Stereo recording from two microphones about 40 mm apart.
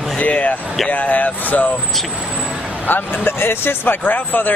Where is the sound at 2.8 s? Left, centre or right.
Left.